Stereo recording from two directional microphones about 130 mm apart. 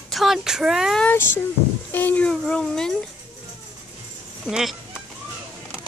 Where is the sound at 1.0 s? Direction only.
15° left (ahead or behind).